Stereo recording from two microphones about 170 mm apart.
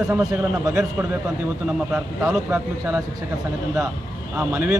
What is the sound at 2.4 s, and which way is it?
Speech, 10° right (ahead or behind).